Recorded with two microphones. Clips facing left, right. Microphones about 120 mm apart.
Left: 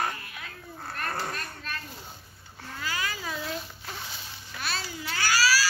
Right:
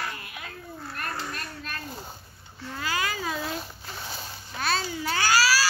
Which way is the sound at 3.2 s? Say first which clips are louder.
Right 3 dB; 45° right (ahead or behind).